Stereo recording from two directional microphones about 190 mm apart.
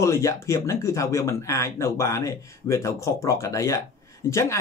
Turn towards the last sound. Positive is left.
turn(degrees=15)  # may be behind; listen again after turning